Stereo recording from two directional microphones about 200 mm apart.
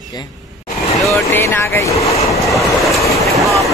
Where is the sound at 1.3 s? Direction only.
10° left (ahead or behind).